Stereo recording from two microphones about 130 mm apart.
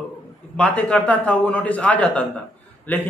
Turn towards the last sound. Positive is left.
turn(degrees=15)  # may be behind; listen again after turning